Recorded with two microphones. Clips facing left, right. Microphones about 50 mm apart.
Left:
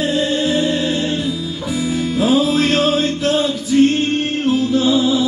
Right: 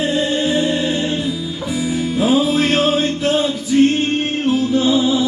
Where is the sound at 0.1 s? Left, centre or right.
Centre.